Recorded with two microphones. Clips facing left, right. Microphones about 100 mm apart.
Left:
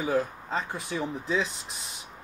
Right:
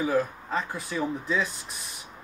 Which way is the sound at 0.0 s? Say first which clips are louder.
Right 2 dB; 25° left (ahead or behind).